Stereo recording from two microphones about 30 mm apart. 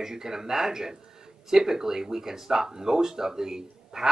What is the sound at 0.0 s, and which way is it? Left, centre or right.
Speech, centre.